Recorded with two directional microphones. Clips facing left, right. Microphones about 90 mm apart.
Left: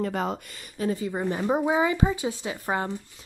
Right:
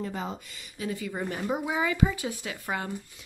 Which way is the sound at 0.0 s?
70° left (ahead or behind).